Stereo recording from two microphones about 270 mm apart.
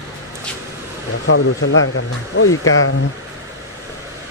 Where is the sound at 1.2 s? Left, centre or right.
Left.